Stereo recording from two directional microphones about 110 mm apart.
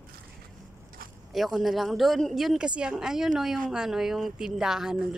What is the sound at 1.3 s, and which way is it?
Speech, centre (ahead or behind).